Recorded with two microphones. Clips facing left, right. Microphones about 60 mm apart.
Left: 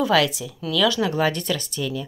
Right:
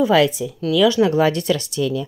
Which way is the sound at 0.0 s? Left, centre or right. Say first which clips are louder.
Right 4 dB; right.